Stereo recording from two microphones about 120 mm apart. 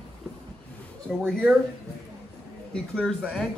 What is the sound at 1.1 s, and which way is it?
Speech, 5° left (ahead or behind).